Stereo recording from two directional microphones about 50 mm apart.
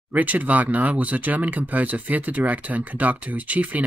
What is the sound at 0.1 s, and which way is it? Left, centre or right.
Speech, right.